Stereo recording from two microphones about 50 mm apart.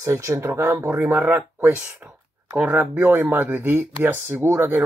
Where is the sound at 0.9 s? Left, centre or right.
Right.